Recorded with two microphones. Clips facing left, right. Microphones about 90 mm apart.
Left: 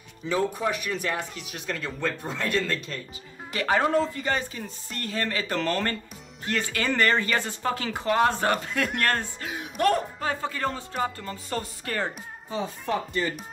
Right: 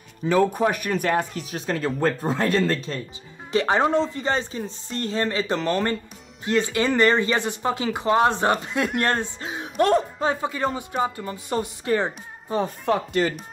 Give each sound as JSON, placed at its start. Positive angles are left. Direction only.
{"t": 0.3, "sound": "speech", "side_deg": -55}
{"t": 12.4, "sound": "speech", "side_deg": -55}